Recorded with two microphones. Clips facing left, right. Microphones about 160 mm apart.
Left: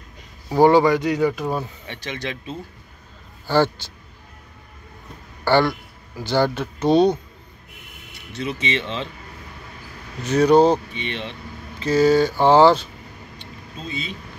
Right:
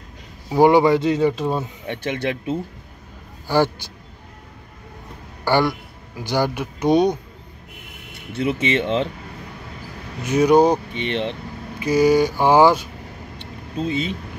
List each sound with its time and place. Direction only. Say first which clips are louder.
0.5 s speech: right 1 dB; 15° right (ahead or behind)
1.9 s speech: right 6 dB; 55° right (ahead or behind)
3.4 s a man's voice: even; 15° right (ahead or behind)
5.4 s a man's voice: left 1 dB; 15° right (ahead or behind)
8.3 s speech: right 5 dB; 55° right (ahead or behind)
10.2 s speech: even; 10° right (ahead or behind)
10.9 s speech: right 6 dB; 60° right (ahead or behind)
11.8 s speech: even; 15° right (ahead or behind)
13.4 s vehicle: right 11 dB; 60° right (ahead or behind)